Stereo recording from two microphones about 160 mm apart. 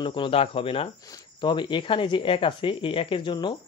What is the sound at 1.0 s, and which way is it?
A man's voice, 20° left (ahead or behind).